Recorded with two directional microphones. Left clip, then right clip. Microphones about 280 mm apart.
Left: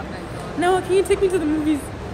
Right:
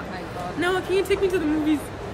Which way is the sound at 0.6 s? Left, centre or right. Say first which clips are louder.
Left 5 dB; centre.